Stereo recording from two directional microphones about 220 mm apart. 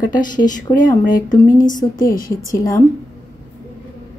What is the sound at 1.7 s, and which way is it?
A woman's voice, 15° left (ahead or behind).